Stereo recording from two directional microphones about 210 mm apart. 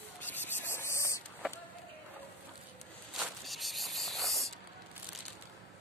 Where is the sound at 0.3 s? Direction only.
10° left (ahead or behind).